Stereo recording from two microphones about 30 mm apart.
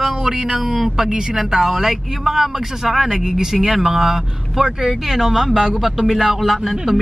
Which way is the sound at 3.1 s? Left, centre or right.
Right.